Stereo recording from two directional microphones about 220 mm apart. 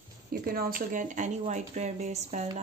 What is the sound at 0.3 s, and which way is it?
Speech, 45° right (ahead or behind).